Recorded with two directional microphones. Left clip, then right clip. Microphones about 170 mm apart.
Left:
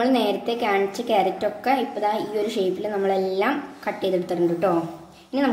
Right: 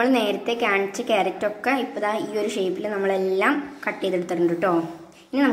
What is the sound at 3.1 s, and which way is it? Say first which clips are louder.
Speech: right 1 dB; 35° right (ahead or behind).